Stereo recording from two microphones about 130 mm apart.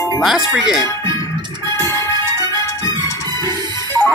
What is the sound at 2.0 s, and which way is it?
Music, 20° left (ahead or behind).